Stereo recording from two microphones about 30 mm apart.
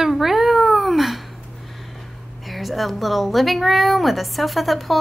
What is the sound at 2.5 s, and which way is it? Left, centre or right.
A woman's voice, centre.